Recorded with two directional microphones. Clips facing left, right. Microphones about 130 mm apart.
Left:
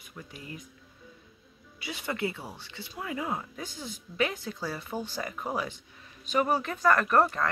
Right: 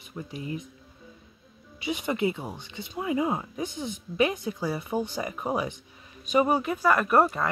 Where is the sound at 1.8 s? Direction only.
20° right (ahead or behind).